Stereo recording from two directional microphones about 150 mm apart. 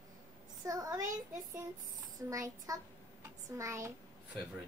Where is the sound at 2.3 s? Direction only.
20° right (ahead or behind).